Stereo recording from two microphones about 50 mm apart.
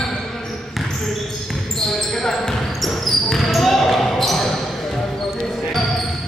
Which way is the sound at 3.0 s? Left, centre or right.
Centre.